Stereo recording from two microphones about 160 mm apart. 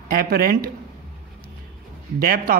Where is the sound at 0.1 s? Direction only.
70° right (ahead or behind).